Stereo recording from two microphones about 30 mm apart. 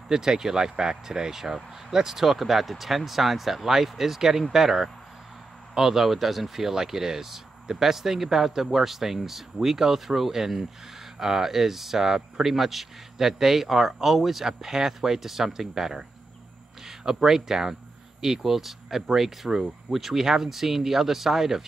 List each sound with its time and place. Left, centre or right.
0.1 s speech: centre